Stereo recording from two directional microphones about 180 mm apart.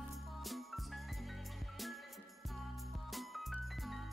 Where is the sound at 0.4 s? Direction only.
Centre (ahead or behind).